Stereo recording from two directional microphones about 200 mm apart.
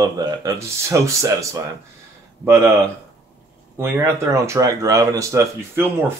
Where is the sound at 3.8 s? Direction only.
15° right (ahead or behind).